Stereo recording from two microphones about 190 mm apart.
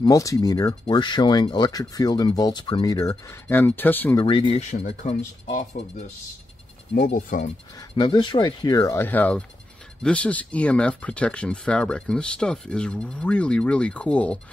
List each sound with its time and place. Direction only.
0.0 s speech: 15° left (ahead or behind)
4.3 s speech: 25° left (ahead or behind); by 5.7 s 45° left (ahead or behind)
6.9 s speech: 45° left (ahead or behind)
7.9 s speech: 25° left (ahead or behind); by 14.4 s 5° left (ahead or behind)